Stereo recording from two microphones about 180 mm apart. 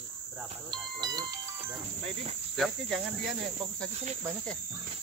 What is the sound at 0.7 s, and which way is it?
Speech, 25° right (ahead or behind).